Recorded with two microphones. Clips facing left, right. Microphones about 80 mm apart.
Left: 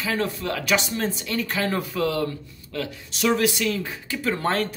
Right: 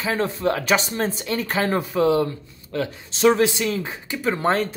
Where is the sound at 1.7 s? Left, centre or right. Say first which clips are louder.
Right 5 dB; right.